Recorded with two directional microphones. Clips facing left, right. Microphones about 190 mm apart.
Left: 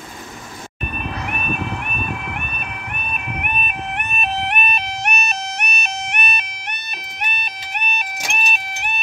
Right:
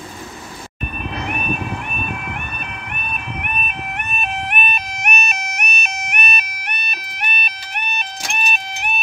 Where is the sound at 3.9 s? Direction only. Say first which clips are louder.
Left 2 dB; 35° left (ahead or behind); by 8.9 s 5° left (ahead or behind).